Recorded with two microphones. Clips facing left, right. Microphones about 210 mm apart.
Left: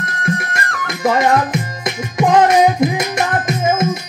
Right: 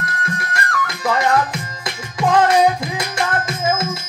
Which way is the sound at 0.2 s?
20° left (ahead or behind).